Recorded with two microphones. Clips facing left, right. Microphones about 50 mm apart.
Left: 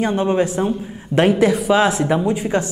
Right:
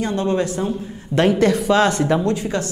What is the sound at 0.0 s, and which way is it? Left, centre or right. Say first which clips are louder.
A woman's voice: left 3 dB; centre.